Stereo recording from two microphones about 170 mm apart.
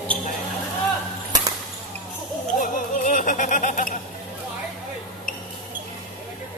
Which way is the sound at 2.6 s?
50° left (ahead or behind).